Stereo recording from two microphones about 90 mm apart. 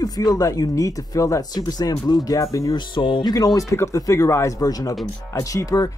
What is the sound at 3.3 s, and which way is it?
Speech, 40° left (ahead or behind).